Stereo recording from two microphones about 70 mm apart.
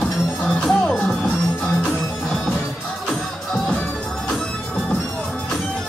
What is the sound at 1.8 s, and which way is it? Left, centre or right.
Music, centre.